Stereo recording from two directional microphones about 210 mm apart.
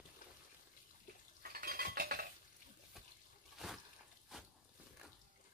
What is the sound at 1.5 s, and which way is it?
Cutlery, 45° right (ahead or behind).